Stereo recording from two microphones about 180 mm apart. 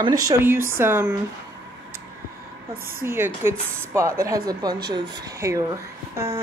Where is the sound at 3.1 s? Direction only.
10° right (ahead or behind).